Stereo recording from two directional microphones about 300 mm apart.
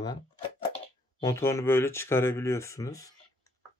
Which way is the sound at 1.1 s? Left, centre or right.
Centre.